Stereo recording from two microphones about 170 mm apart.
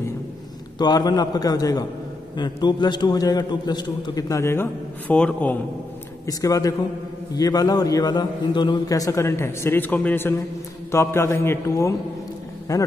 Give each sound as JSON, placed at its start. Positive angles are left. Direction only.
{"t": 0.7, "sound": "a man's voice", "side_deg": 25}
{"t": 6.2, "sound": "a man's voice", "side_deg": 20}